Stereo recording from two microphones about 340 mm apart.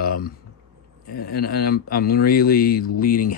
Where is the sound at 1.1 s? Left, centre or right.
Left.